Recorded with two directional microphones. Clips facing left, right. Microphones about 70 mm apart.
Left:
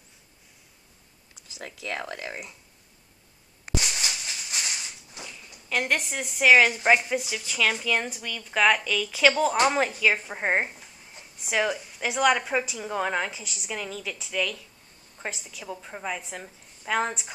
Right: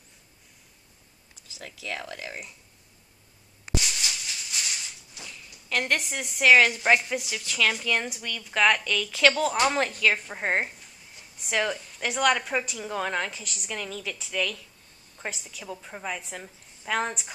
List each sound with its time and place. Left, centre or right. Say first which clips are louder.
1.9 s speech: left 2 dB; left
3.8 s a sound: left 1 dB; left
5.2 s a woman's voice: left 1 dB; centre